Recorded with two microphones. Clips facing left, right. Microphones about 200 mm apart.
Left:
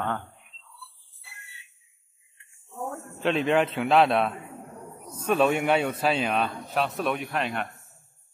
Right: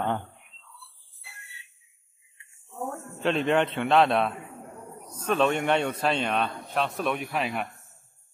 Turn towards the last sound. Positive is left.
turn(degrees=-5)  # may be behind; listen again after turning